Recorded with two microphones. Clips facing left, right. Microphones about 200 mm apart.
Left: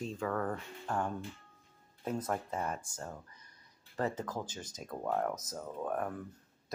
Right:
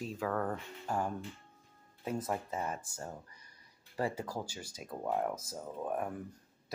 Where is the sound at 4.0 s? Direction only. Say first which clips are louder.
Even; 10° right (ahead or behind).